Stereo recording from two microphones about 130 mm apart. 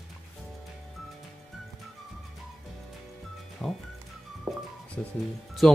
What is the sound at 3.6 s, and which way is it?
Music, 10° left (ahead or behind).